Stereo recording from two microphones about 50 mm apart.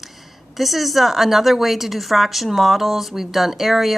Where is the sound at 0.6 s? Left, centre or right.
Centre.